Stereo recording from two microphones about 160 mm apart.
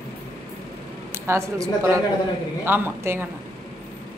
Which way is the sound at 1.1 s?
15° right (ahead or behind).